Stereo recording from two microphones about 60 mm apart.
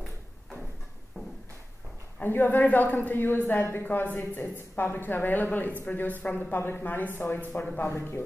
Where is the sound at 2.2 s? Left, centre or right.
Left.